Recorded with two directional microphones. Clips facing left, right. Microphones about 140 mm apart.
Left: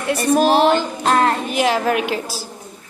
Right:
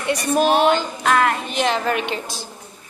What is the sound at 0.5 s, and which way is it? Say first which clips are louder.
Music: left 2 dB; 35° left (ahead or behind).